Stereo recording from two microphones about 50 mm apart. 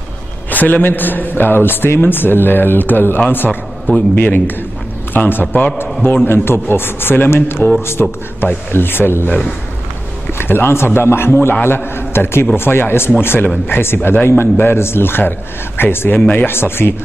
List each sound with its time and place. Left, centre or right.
0.5 s a man's voice: left
6.0 s a man's voice: left
10.3 s a man's voice: left
16.5 s a man's voice: left